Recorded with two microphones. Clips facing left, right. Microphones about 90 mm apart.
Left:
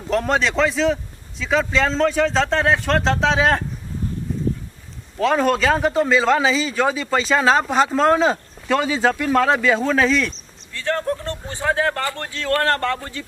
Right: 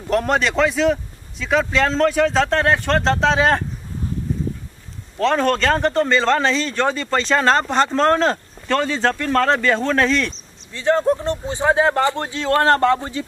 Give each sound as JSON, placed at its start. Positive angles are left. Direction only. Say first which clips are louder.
{"t": 0.1, "sound": "a man's voice", "louder": "right 1 dB", "side_deg": 0}
{"t": 5.2, "sound": "a man's voice", "louder": "even", "side_deg": 5}
{"t": 10.7, "sound": "speech", "louder": "right 6 dB", "side_deg": -20}